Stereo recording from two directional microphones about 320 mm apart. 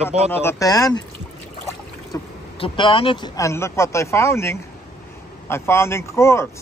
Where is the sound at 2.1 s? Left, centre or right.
Centre.